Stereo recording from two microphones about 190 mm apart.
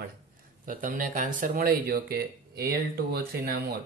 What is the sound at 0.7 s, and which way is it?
Speech, 45° right (ahead or behind).